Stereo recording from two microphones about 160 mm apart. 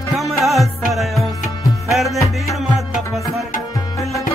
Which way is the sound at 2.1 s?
20° left (ahead or behind).